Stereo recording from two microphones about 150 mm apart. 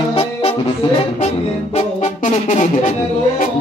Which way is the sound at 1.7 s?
50° left (ahead or behind).